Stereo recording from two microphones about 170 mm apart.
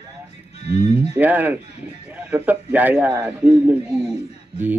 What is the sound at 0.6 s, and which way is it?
Speech, 40° left (ahead or behind).